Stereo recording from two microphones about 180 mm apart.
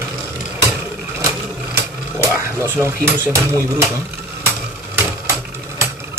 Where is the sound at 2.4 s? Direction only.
15° right (ahead or behind).